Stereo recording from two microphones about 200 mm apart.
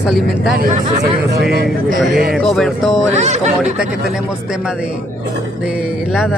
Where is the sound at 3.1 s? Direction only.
35° right (ahead or behind).